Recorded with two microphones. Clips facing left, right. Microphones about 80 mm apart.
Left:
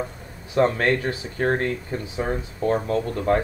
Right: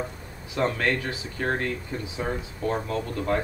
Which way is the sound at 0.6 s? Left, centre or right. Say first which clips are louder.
Left 5 dB; left.